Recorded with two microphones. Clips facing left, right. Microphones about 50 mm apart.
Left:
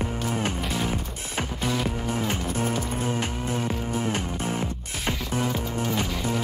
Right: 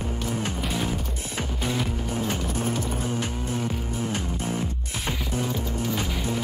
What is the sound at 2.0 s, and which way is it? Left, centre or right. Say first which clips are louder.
Music: left 1 dB; left.